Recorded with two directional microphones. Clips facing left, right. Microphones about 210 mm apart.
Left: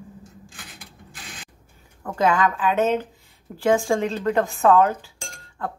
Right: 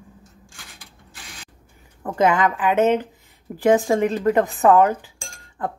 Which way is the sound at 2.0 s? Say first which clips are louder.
Right 2 dB; 20° right (ahead or behind).